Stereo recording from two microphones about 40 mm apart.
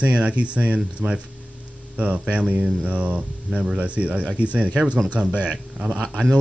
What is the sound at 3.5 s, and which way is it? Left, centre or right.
Speech, centre.